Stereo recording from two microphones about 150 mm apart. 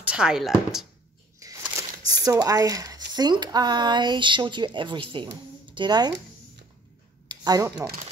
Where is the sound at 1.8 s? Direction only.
25° right (ahead or behind).